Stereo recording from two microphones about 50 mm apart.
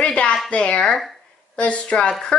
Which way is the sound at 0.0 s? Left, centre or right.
Left.